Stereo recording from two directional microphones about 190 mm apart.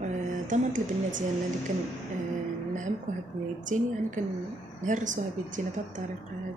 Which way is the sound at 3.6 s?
40° right (ahead or behind).